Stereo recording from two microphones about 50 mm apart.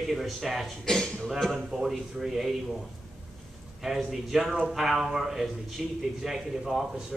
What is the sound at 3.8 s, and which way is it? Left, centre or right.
A man's voice, centre.